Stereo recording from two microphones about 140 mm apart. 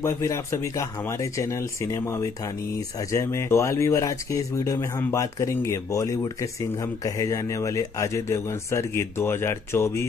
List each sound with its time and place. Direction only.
0.0 s speech: 20° left (ahead or behind)
7.2 s speech: 20° left (ahead or behind)